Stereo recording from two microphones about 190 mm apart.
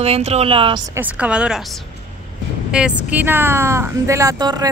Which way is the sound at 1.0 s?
10° right (ahead or behind).